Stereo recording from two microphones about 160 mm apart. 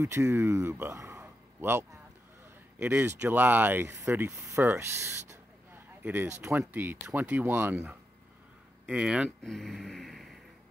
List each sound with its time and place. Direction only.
0.0 s speech: 15° right (ahead or behind)
6.6 s speech: 10° right (ahead or behind)